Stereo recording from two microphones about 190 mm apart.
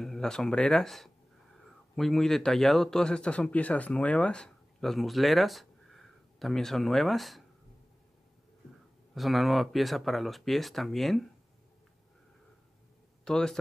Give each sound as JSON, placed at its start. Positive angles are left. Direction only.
{"t": 0.0, "sound": "a man's voice", "side_deg": 5}
{"t": 9.1, "sound": "speech", "side_deg": 0}
{"t": 13.2, "sound": "speech", "side_deg": 5}